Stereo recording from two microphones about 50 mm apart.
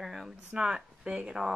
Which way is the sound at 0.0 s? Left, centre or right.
Centre.